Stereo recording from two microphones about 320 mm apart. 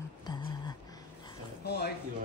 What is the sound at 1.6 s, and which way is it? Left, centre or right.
Speech, left.